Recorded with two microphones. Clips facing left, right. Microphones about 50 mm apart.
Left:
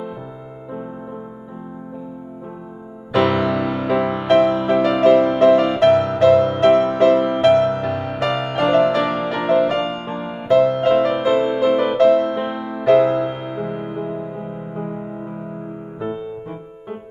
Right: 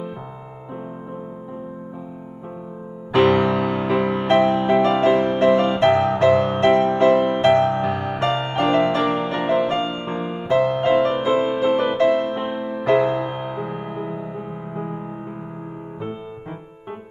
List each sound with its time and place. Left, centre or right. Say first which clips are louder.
3.1 s music: right 1 dB; right